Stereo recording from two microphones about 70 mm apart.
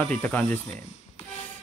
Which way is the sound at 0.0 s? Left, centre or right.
Centre.